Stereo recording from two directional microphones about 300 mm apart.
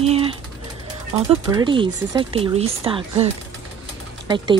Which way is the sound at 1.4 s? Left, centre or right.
Centre.